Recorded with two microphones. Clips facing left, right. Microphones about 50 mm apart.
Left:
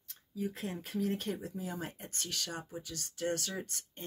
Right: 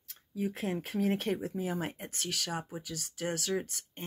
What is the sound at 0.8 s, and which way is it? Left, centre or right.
Speech, right.